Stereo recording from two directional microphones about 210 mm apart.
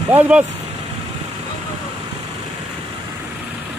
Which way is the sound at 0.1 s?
10° right (ahead or behind).